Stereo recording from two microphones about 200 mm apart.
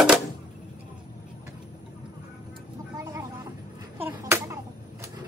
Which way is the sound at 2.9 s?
15° right (ahead or behind).